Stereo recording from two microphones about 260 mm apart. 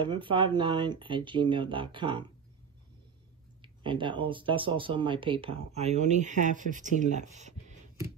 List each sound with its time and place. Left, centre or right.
0.0 s speech: centre
3.6 s speech: centre